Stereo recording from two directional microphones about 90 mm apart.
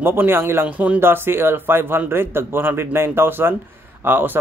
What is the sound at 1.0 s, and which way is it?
Speech, 25° right (ahead or behind).